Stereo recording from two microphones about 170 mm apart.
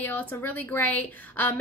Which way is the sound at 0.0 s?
10° left (ahead or behind).